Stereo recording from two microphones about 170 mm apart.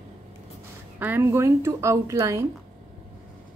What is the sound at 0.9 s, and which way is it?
A woman's voice, 10° right (ahead or behind).